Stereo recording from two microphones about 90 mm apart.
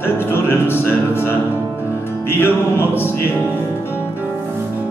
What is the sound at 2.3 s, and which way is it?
Music, 25° left (ahead or behind).